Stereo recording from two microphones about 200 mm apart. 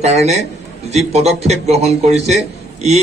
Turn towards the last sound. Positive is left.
turn(degrees=-35)  # may be behind; listen again after turning